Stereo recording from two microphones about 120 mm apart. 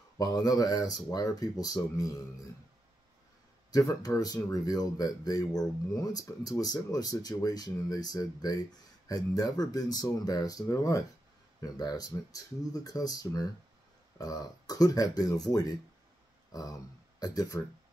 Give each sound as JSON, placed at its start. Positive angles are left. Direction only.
{"t": 0.2, "sound": "speech", "side_deg": 30}
{"t": 3.7, "sound": "speech", "side_deg": 30}
{"t": 16.5, "sound": "speech", "side_deg": 30}